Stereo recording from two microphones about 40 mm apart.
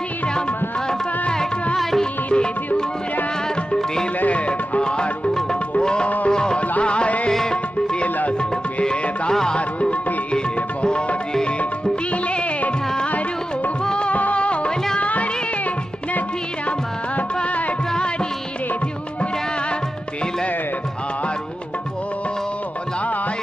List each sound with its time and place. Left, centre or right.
1.3 s music: centre
2.2 s music: left
4.3 s music: left
6.0 s music: left
6.3 s music: left
7.2 s music: centre
8.0 s music: left
9.3 s music: centre
9.6 s music: left
14.1 s music: left